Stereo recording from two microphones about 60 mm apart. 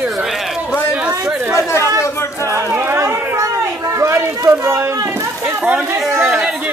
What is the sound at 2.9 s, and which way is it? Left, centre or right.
Speech, right.